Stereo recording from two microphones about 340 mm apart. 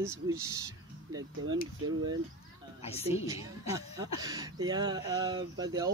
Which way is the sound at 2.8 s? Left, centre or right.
Centre.